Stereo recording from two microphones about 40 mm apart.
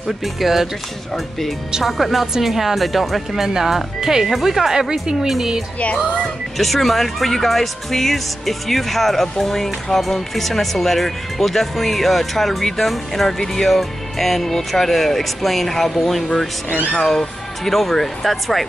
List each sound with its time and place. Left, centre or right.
0.2 s speech: centre
1.9 s speech: centre
6.6 s speech: centre
16.6 s speech: left
16.9 s speech: centre